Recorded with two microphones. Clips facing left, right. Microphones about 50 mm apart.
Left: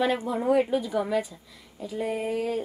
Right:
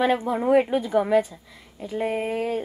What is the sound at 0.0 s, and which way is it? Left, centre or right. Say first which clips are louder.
A woman's voice: right 3 dB; right.